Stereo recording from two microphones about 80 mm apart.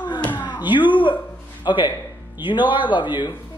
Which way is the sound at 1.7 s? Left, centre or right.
Left.